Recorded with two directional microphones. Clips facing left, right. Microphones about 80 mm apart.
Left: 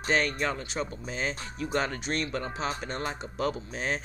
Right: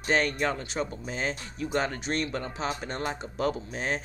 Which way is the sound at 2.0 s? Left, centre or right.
Right.